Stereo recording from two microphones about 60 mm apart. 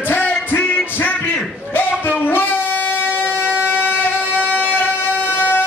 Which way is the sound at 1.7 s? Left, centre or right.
Left.